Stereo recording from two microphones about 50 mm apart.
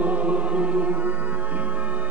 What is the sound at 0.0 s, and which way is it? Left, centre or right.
Chant, right.